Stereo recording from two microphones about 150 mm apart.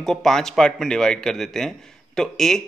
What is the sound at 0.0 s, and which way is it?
Speech, 5° left (ahead or behind).